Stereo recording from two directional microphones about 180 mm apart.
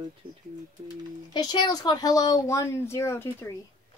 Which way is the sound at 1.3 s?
25° left (ahead or behind).